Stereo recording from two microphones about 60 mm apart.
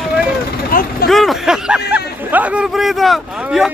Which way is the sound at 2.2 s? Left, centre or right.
Right.